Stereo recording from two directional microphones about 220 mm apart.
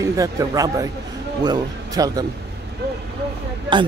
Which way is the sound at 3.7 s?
20° right (ahead or behind).